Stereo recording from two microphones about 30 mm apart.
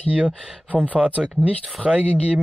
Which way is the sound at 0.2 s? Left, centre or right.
Right.